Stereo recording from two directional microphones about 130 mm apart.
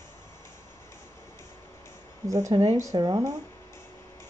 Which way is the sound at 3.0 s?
30° right (ahead or behind).